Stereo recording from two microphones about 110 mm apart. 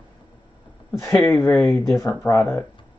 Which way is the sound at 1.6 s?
25° left (ahead or behind).